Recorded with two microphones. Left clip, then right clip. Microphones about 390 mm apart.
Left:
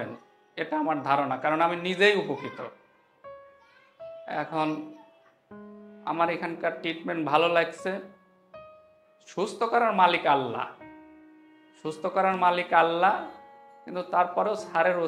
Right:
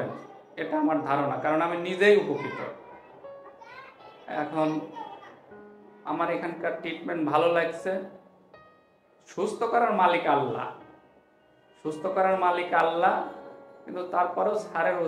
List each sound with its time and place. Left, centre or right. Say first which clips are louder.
0.6 s a man's voice: right 1 dB; left
4.3 s speech: right 1 dB; left
6.0 s a man's voice: left 2 dB; left
9.3 s a man's voice: even; left
11.8 s a man's voice: even; left